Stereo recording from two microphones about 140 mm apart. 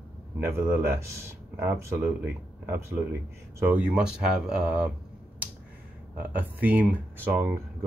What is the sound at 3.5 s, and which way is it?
Speech, 15° right (ahead or behind).